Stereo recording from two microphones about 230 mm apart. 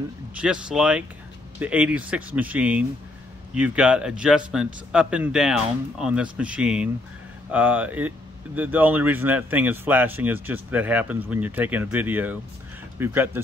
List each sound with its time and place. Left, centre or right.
0.4 s speech: centre